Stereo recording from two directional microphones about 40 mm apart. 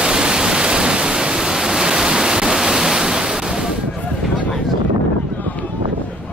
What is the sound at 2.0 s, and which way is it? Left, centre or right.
Ocean, centre.